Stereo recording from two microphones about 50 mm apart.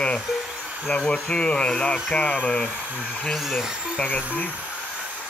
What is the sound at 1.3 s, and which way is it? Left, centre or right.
Speech, centre.